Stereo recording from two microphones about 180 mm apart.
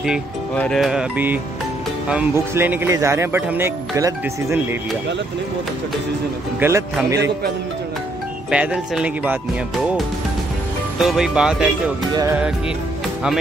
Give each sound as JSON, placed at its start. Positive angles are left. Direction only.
{"t": 0.6, "sound": "music", "side_deg": 0}
{"t": 2.0, "sound": "speech", "side_deg": -10}
{"t": 6.6, "sound": "speech", "side_deg": -15}
{"t": 7.2, "sound": "speech", "side_deg": -70}
{"t": 8.5, "sound": "speech", "side_deg": -5}
{"t": 11.0, "sound": "music", "side_deg": 0}
{"t": 12.1, "sound": "music", "side_deg": -20}